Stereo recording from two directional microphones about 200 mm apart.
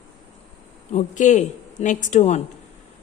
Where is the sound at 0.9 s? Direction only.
40° left (ahead or behind).